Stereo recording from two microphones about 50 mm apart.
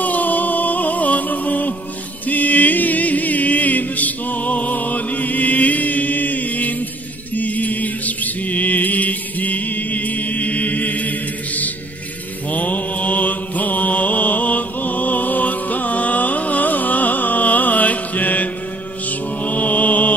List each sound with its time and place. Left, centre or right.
0.0 s music: left
7.3 s mantra: left